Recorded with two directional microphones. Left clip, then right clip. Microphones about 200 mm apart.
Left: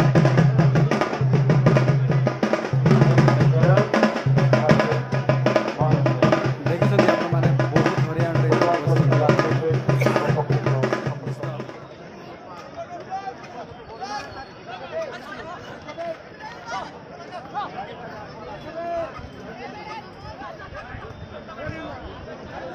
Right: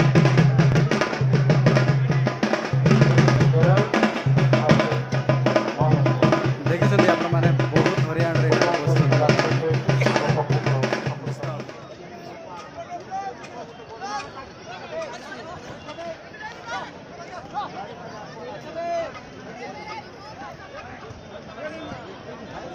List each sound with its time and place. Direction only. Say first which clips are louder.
0.0 s music: even; 35° left (ahead or behind)
0.8 s music: even; 20° left (ahead or behind)
7.0 s music: even; 25° left (ahead or behind)